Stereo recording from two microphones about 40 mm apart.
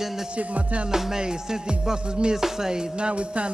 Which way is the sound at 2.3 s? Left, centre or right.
Centre.